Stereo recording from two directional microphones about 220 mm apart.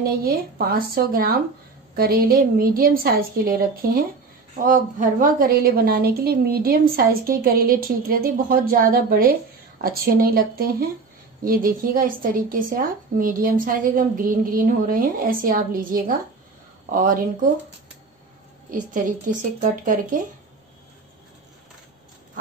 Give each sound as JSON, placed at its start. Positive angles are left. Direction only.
{"t": 0.0, "sound": "a woman's voice", "side_deg": -45}
{"t": 18.7, "sound": "speech", "side_deg": -40}